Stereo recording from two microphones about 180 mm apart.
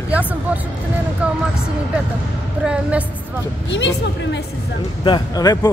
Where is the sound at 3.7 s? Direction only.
80° left.